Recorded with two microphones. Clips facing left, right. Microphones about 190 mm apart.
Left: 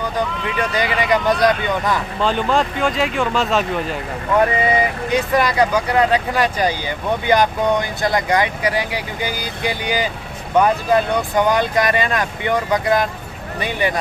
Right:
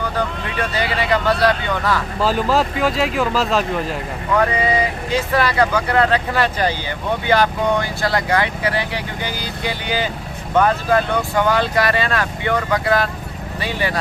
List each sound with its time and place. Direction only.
1.1 s speech: 15° left (ahead or behind)
2.1 s speech: 5° right (ahead or behind)
5.3 s speech: 15° left (ahead or behind)